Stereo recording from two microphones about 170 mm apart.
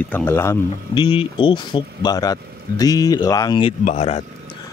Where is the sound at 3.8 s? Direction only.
40° left (ahead or behind).